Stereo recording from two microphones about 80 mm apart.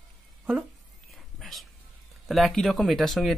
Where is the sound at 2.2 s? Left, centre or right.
Centre.